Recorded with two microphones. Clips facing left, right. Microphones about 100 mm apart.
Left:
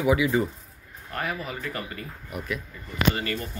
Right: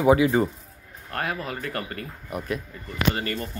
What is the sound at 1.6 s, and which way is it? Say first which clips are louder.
Speech: right 2 dB; 50° right (ahead or behind).